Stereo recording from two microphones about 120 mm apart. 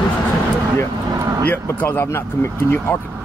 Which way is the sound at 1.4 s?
15° left (ahead or behind).